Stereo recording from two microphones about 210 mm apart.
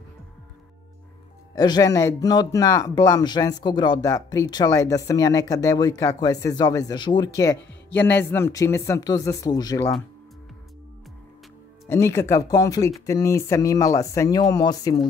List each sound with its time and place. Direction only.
1.5 s speech: 20° left (ahead or behind)
11.9 s speech: 15° left (ahead or behind)